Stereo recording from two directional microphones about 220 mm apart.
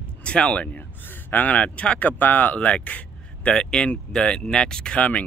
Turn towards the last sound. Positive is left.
turn(degrees=5)  # may be behind; listen again after turning